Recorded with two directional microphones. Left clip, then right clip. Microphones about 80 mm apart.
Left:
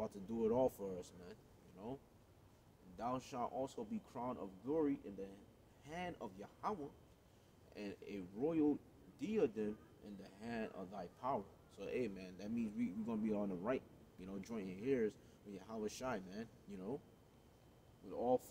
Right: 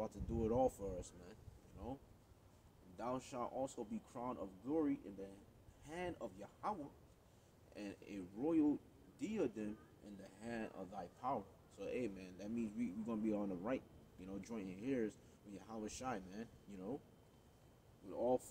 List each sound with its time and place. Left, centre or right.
0.0 s speech: left
3.0 s speech: left
18.1 s speech: left